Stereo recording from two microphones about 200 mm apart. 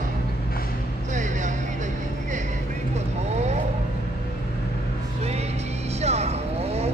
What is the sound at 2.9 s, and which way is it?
Vehicle, 35° right (ahead or behind).